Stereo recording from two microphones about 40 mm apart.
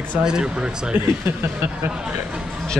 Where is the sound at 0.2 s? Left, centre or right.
Right.